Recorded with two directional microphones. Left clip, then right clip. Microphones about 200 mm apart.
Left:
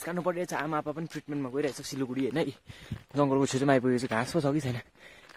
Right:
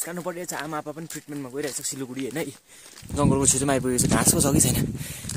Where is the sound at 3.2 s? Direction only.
10° right (ahead or behind).